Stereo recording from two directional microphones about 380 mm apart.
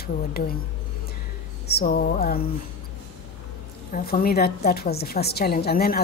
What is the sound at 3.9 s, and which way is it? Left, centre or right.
A woman's voice, left.